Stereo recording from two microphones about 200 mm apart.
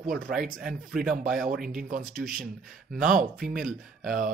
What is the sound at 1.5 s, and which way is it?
Speech, 45° right (ahead or behind).